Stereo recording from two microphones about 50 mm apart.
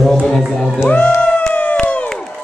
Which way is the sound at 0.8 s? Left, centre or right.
Left.